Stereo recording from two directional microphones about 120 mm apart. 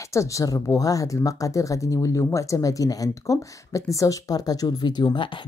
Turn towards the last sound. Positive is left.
turn(degrees=40)  # may be behind; listen again after turning